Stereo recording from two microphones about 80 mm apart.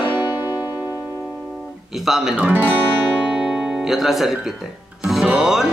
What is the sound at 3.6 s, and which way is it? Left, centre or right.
Speech, centre.